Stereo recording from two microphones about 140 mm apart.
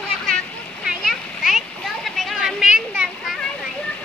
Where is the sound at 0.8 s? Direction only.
Centre (ahead or behind).